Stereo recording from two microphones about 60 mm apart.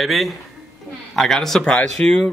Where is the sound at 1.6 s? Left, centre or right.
Centre.